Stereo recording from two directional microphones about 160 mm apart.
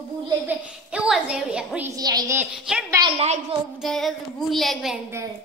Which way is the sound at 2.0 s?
25° right (ahead or behind).